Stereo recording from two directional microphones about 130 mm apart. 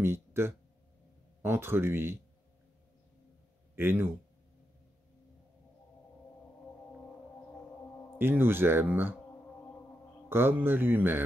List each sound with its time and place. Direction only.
0.0 s speech: 20° right (ahead or behind)
3.7 s speech: 15° right (ahead or behind)
8.2 s speech: 15° right (ahead or behind)
10.3 s speech: 15° right (ahead or behind)